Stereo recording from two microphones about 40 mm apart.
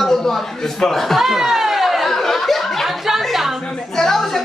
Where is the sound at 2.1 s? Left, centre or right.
Centre.